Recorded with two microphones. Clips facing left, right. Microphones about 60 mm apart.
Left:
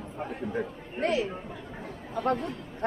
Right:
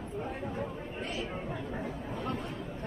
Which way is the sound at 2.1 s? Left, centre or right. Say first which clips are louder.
Left 11 dB; left.